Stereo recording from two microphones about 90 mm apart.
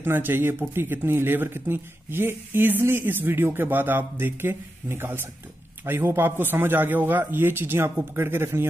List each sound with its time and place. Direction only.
0.0 s speech: 25° right (ahead or behind)